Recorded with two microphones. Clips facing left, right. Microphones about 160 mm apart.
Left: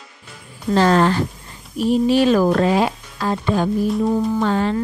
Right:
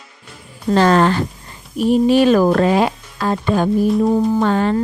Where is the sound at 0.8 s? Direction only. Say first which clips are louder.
Right 2 dB; 65° right (ahead or behind).